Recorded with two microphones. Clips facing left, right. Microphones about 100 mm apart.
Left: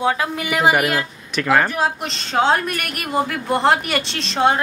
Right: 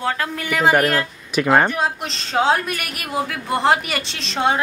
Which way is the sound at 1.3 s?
10° right (ahead or behind).